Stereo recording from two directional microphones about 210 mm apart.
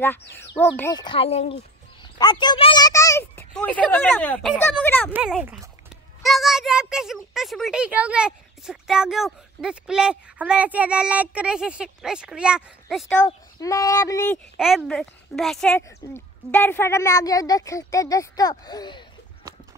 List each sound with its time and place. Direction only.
0.4 s speech: 10° left (ahead or behind)
5.1 s a child's voice: 5° right (ahead or behind)
13.1 s speech: 10° left (ahead or behind)
14.6 s speech: centre (ahead or behind); by 19.0 s 20° left (ahead or behind)